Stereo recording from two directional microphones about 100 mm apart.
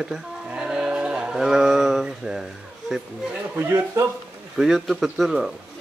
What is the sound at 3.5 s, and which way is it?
Speech, 30° right (ahead or behind).